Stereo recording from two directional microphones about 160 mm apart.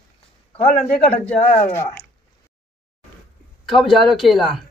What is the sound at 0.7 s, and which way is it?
Speech, 50° left (ahead or behind).